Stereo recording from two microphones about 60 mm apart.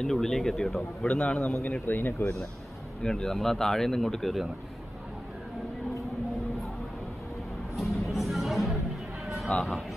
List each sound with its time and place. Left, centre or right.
0.0 s a man's voice: centre
1.6 s speech: left
3.0 s a man's voice: centre
7.7 s music: centre
9.2 s a sound: centre
9.6 s speech: centre